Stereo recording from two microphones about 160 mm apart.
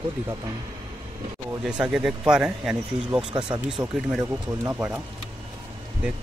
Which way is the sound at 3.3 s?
30° right (ahead or behind).